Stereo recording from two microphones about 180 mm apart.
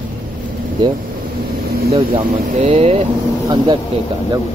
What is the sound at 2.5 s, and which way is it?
Speech, 35° right (ahead or behind).